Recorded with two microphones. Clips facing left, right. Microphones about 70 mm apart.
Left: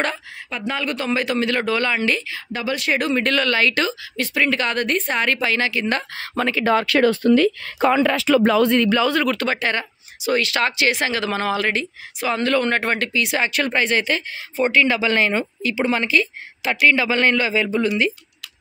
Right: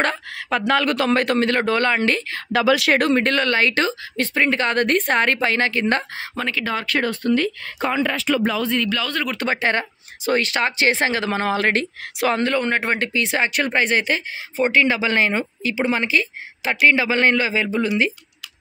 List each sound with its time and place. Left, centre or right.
0.5 s speech: right
2.5 s speech: right
3.0 s speech: right
3.3 s speech: right
6.4 s speech: centre
6.9 s speech: left
8.8 s speech: left
9.1 s speech: centre
9.4 s speech: right
12.5 s speech: centre